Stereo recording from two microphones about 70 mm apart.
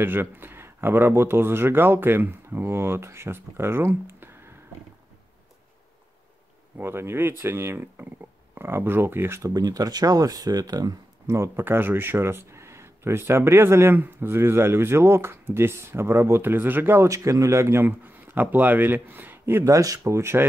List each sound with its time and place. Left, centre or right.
0.0 s speech: right
6.8 s speech: right
9.4 s speech: right
11.2 s speech: right
11.6 s speech: right
17.1 s speech: right
17.8 s a man's voice: right
19.6 s speech: right